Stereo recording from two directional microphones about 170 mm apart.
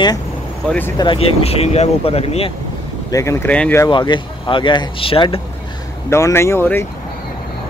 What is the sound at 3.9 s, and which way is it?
Speech, 30° left (ahead or behind).